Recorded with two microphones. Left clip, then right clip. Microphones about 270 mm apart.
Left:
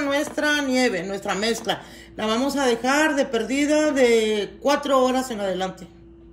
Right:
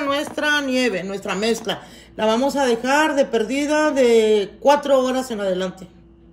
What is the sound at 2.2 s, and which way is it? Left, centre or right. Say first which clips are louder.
Speech: right 5 dB; centre.